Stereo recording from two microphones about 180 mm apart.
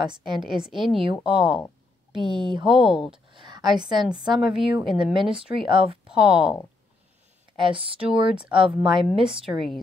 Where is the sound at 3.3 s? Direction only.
25° right (ahead or behind).